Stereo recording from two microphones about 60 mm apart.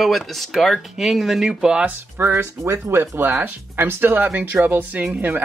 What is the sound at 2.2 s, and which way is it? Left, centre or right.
Speech, right.